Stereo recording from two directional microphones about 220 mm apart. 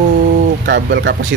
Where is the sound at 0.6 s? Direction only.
50° right (ahead or behind).